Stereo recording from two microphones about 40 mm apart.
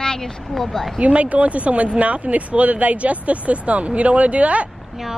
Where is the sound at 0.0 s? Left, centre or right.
Centre.